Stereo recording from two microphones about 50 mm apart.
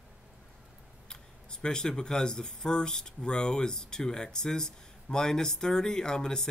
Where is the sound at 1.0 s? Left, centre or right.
Centre.